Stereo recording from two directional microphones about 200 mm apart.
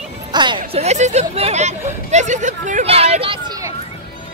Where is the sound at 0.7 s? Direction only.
35° right (ahead or behind).